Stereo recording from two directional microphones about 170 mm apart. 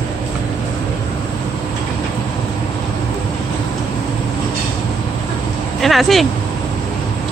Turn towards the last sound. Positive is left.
turn(degrees=0)  # may be behind; listen again after turning